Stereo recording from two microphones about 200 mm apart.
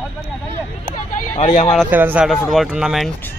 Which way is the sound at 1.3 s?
35° left (ahead or behind).